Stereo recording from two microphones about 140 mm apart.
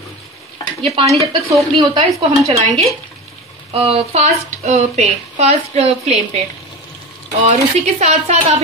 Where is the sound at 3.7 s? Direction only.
45° right (ahead or behind).